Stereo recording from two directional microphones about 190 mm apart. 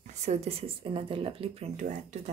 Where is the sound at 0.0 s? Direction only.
35° right (ahead or behind).